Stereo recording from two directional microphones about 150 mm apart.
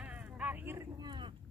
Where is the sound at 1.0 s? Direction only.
30° right (ahead or behind).